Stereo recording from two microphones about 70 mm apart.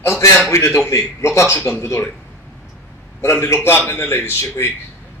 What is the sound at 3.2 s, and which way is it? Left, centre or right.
Speech, left.